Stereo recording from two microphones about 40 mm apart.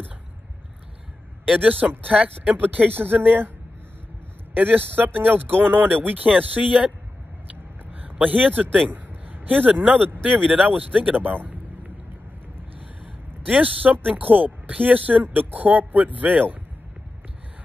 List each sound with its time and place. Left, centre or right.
1.6 s speech: right
4.6 s speech: right
7.9 s a man's voice: right
10.2 s speech: right
13.5 s speech: right